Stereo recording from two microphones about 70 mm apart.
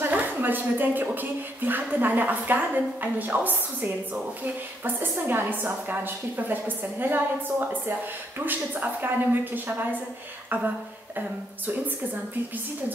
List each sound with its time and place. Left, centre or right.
0.0 s a woman's voice: right
4.8 s a woman's voice: right